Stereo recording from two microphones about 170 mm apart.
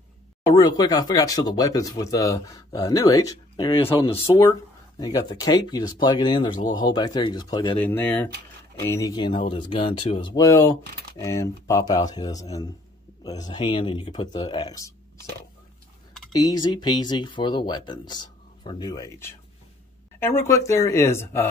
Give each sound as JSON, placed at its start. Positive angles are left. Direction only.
{"t": 0.5, "sound": "speech", "side_deg": 20}
{"t": 4.4, "sound": "speech", "side_deg": 20}
{"t": 7.7, "sound": "speech", "side_deg": 10}
{"t": 16.3, "sound": "speech", "side_deg": 25}
{"t": 20.4, "sound": "speech", "side_deg": 15}